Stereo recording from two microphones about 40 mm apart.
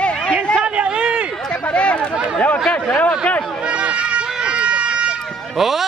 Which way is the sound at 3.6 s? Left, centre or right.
Right.